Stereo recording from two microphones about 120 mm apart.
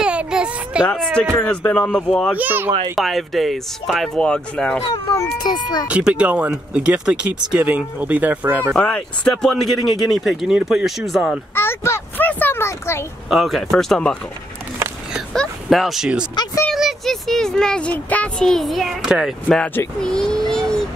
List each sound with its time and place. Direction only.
0.0 s a sound: 10° right (ahead or behind)
0.8 s speech: 5° left (ahead or behind)
2.3 s speech: 15° right (ahead or behind)
3.0 s speech: centre (ahead or behind)
5.4 s speech: 35° left (ahead or behind)
5.9 s speech: 10° right (ahead or behind)
8.7 s speech: 10° left (ahead or behind)
11.5 s a child's voice: 20° left (ahead or behind)
13.3 s speech: centre (ahead or behind)
15.3 s speech: centre (ahead or behind)
19.6 s speech: 15° left (ahead or behind)
20.0 s a child's voice: 5° left (ahead or behind)